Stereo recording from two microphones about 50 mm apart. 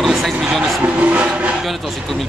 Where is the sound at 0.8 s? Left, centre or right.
Right.